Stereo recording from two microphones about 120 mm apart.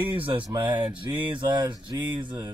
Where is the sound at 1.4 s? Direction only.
40° right (ahead or behind).